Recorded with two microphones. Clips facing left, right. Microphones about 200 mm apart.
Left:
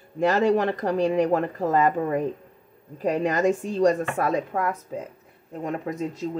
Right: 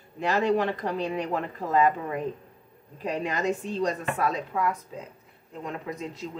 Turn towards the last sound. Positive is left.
turn(degrees=45)  # may be behind; listen again after turning